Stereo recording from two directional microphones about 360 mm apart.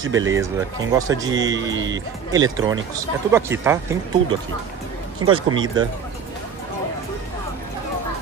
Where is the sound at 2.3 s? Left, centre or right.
Centre.